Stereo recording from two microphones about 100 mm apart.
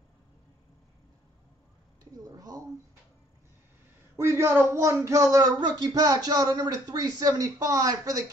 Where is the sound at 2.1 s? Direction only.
35° right (ahead or behind).